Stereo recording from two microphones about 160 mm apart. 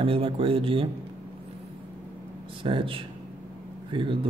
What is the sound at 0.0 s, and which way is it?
Speech, 35° right (ahead or behind).